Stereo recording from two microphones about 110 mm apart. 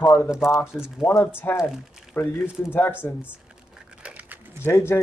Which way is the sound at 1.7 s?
5° right (ahead or behind).